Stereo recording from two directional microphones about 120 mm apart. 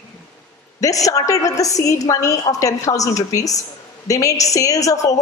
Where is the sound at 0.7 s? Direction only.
30° left (ahead or behind).